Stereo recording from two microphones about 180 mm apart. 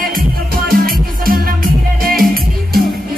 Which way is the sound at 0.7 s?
55° right (ahead or behind).